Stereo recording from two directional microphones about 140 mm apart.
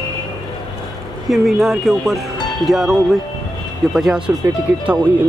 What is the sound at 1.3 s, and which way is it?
Speech, centre (ahead or behind).